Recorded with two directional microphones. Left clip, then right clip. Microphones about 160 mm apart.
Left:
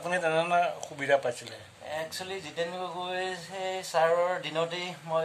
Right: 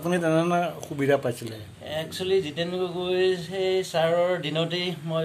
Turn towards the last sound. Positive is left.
turn(degrees=10)  # may be behind; listen again after turning